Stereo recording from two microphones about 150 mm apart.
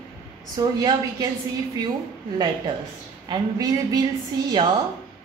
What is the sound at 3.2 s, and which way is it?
A woman's voice, 25° right (ahead or behind).